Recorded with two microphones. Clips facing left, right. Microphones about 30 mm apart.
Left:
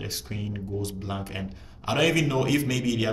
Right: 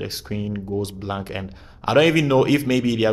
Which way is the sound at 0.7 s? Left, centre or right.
Right.